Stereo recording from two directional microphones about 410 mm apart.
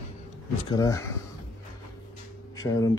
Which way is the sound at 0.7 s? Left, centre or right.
Centre.